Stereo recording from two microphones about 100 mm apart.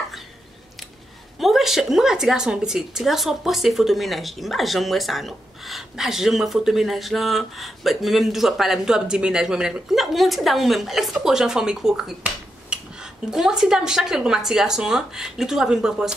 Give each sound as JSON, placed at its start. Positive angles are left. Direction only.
{"t": 1.4, "sound": "a woman's voice", "side_deg": 0}